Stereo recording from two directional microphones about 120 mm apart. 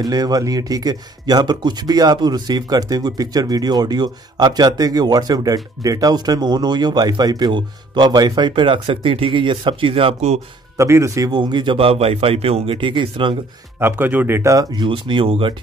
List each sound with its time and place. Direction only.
0.0 s speech: 30° right (ahead or behind); by 10.4 s 55° right (ahead or behind)
10.8 s a man's voice: 25° right (ahead or behind); by 13.4 s 45° right (ahead or behind)
13.7 s speech: 20° right (ahead or behind); by 15.5 s 50° right (ahead or behind)